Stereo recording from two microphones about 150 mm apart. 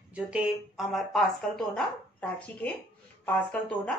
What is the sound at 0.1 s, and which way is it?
Speech, 5° right (ahead or behind).